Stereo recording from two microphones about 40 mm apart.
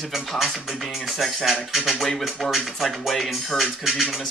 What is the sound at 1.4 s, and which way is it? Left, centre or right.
Speech, centre.